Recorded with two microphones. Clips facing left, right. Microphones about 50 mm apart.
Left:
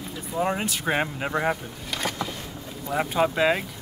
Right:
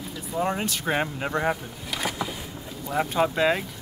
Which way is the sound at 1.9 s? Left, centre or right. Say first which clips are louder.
Even; centre.